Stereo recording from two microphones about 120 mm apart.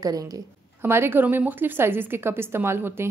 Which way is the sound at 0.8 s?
20° right (ahead or behind).